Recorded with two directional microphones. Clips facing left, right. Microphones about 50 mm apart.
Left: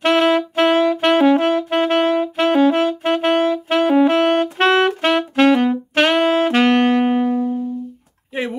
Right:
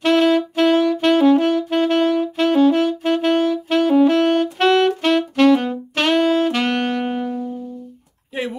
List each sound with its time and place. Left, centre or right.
0.0 s saxophone: left